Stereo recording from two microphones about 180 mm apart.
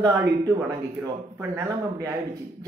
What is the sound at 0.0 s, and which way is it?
A man's voice, 20° right (ahead or behind).